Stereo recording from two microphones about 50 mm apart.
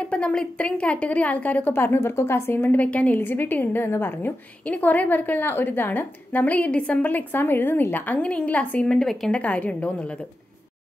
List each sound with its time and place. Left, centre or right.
0.1 s a sound: left
0.6 s a woman's voice: left
1.7 s a woman's voice: left
2.9 s a woman's voice: left
3.2 s a woman's voice: left
4.6 s a woman's voice: left
8.2 s a woman's voice: left
9.0 s speech: centre
9.3 s a woman's voice: left